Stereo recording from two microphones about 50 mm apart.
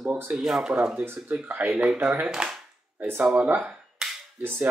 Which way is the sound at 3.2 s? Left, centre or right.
Right.